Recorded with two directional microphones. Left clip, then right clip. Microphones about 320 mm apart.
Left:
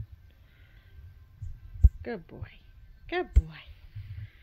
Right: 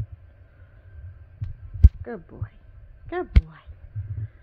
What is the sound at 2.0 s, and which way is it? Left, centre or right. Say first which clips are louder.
A woman's voice: right 1 dB; centre.